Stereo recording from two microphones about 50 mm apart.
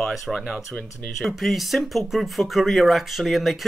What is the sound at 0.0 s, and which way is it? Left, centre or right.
Speech, centre.